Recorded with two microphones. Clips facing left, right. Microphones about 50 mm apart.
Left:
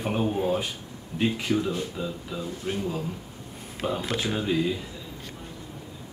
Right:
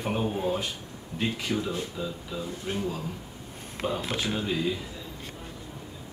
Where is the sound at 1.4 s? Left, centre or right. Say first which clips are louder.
Left 3 dB; centre.